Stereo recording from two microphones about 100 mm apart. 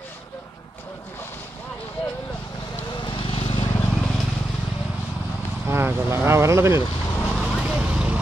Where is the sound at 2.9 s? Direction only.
55° left (ahead or behind).